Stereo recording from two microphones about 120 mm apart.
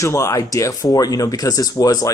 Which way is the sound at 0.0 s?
25° left (ahead or behind).